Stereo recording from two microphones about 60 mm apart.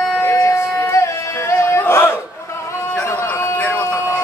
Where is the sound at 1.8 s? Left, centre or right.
Left.